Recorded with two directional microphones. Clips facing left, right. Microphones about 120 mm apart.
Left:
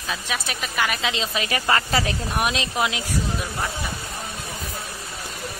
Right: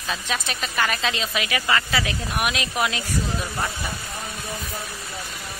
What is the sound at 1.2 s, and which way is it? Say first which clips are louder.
Speech: left 1 dB; 35° left (ahead or behind).